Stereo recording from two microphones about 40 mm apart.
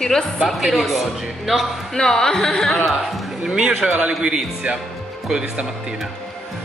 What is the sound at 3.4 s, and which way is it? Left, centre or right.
Speech, centre.